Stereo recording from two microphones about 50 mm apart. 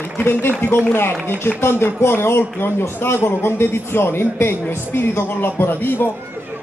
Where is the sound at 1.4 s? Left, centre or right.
Left.